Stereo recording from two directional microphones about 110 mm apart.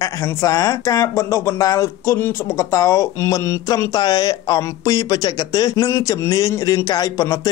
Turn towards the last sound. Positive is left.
turn(degrees=30)  # may be behind; listen again after turning